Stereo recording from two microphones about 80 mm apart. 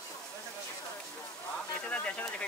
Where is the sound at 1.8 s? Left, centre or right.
Centre.